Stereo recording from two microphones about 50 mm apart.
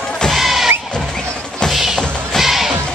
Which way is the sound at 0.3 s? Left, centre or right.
Centre.